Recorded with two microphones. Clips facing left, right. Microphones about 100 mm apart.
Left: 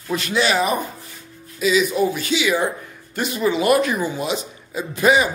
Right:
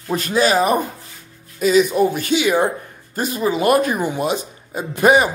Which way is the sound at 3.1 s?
35° right (ahead or behind).